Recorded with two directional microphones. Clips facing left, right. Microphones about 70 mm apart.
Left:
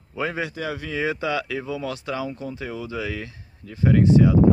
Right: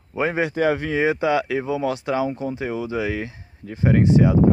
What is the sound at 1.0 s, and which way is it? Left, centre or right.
Speech, right.